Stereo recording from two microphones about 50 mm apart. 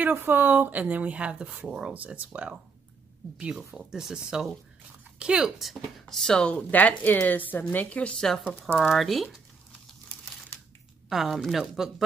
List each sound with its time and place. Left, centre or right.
0.0 s speech: right; by 5.5 s centre
6.0 s speech: centre
6.5 s a woman's voice: left
8.7 s speech: centre
11.1 s speech: centre